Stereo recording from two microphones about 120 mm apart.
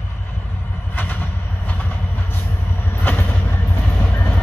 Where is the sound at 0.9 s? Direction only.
15° left (ahead or behind).